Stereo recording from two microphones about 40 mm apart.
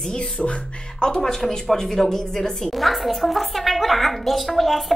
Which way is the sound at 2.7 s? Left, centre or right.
Centre.